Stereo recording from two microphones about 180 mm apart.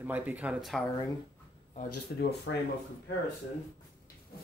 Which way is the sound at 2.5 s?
90° left.